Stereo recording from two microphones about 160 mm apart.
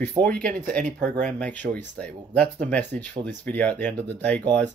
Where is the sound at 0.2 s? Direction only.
10° left (ahead or behind).